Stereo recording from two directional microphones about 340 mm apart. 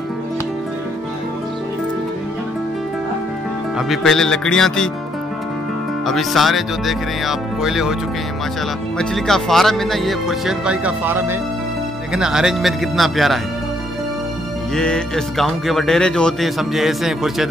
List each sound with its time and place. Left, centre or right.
3.7 s speech: centre
6.0 s speech: centre
8.9 s speech: centre
14.8 s speech: centre